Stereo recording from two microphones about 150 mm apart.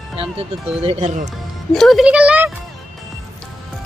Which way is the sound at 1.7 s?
Centre (ahead or behind).